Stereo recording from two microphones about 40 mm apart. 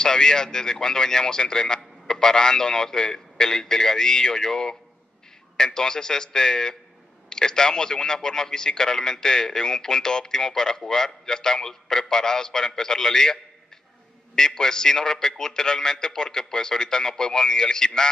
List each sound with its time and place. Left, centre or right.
0.0 s a man's voice: centre